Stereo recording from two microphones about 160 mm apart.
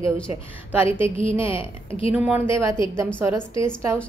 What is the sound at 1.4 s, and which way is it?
Speech, 35° left (ahead or behind).